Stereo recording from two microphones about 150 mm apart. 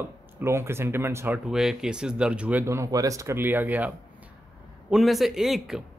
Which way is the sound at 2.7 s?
20° right (ahead or behind).